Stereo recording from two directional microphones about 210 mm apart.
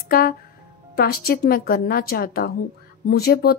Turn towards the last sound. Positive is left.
turn(degrees=45)  # may be behind; listen again after turning